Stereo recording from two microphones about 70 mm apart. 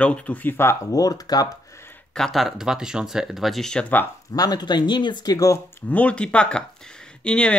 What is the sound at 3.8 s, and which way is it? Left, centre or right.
Speech, left.